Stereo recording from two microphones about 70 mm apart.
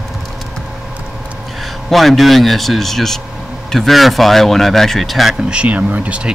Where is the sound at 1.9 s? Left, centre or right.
Centre.